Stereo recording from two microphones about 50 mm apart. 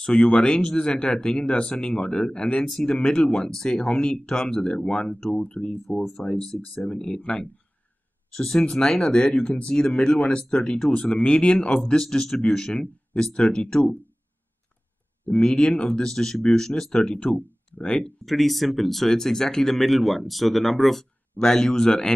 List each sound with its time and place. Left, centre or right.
0.0 s speech: centre
5.4 s speech: left
8.4 s speech: centre
15.2 s speech: centre
18.2 s speech: centre